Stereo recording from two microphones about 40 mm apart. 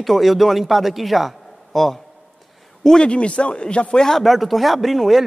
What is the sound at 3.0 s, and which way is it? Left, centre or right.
Speech, left.